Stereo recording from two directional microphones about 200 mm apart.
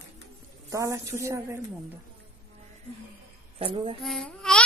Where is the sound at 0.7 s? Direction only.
15° right (ahead or behind).